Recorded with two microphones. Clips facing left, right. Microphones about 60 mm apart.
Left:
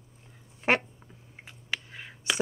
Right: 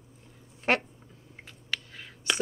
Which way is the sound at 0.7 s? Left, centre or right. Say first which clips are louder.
Left 1 dB; centre.